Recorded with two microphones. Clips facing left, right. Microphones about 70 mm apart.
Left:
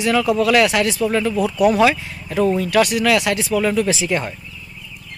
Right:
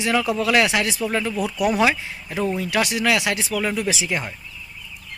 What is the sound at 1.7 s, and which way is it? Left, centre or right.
A man's voice, centre.